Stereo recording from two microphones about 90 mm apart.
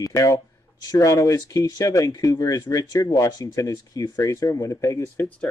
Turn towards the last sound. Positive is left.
turn(degrees=35)  # may be behind; listen again after turning